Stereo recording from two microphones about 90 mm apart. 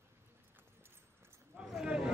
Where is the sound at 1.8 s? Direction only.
10° right (ahead or behind).